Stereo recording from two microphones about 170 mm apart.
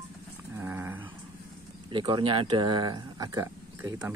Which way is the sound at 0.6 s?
15° right (ahead or behind).